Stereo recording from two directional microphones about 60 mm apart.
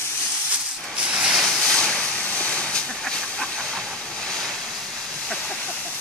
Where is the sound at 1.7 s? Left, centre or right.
Centre.